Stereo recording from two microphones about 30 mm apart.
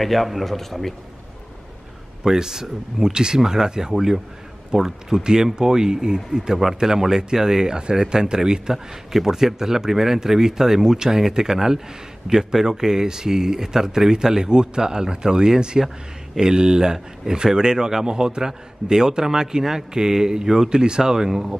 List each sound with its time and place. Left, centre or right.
0.0 s a man's voice: centre
2.2 s speech: centre
3.9 s speech: centre